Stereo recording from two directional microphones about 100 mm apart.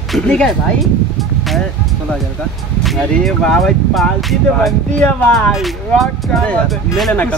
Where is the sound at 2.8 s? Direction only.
5° left (ahead or behind).